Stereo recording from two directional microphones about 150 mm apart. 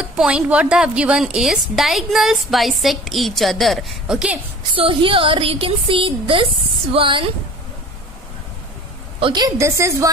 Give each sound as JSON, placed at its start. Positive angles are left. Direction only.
{"t": 0.0, "sound": "a woman's voice", "side_deg": -10}
{"t": 4.7, "sound": "a woman's voice", "side_deg": -35}
{"t": 9.2, "sound": "a woman's voice", "side_deg": -30}